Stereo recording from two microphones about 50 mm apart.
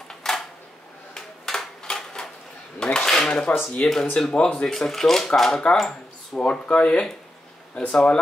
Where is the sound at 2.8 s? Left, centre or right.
Centre.